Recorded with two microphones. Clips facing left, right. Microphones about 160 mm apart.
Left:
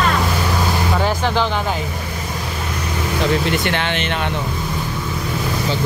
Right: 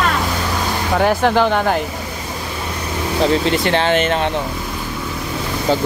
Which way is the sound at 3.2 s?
30° right (ahead or behind).